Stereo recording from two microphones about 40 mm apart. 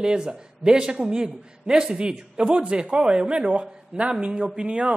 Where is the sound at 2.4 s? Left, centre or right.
Right.